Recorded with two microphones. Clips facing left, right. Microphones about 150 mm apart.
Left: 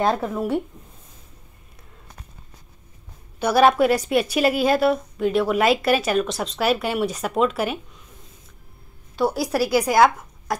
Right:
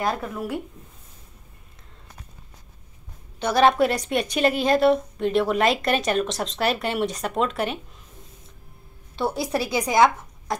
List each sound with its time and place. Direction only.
0.2 s speech: 25° left (ahead or behind)
3.3 s a woman's voice: 5° left (ahead or behind)
9.2 s a woman's voice: 5° left (ahead or behind)